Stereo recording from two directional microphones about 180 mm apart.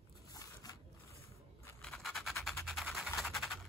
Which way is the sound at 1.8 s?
Centre (ahead or behind).